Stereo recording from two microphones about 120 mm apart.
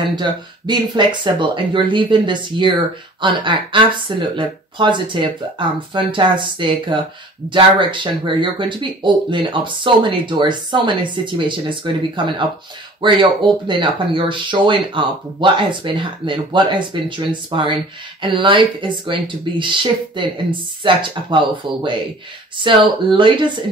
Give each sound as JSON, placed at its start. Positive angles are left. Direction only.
{"t": 0.1, "sound": "speech", "side_deg": -40}